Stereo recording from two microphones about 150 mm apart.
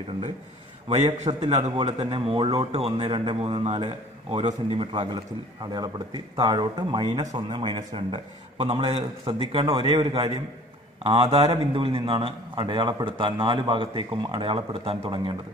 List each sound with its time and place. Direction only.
0.8 s a man's voice: 50° right (ahead or behind)